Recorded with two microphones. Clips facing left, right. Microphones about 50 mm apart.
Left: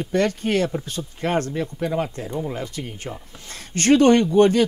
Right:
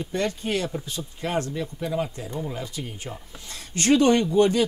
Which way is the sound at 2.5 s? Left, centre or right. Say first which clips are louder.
Left 3 dB; left.